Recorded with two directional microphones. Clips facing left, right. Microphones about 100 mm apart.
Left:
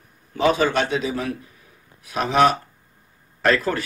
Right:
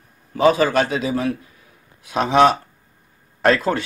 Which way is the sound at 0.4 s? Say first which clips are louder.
Right 3 dB; 40° right (ahead or behind).